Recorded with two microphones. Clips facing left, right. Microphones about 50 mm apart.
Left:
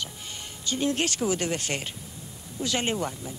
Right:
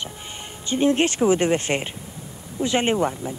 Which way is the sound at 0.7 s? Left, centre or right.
Right.